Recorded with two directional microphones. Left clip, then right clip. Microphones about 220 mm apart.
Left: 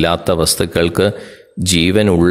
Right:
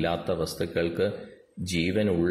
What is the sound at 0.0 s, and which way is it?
Speech, 45° left (ahead or behind).